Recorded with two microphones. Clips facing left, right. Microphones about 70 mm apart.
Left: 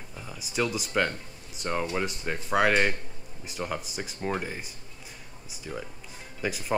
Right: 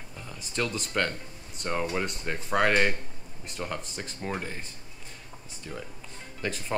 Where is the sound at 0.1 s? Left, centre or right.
Centre.